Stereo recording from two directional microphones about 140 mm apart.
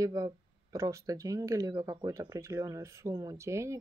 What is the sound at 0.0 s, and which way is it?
Speech, 25° right (ahead or behind).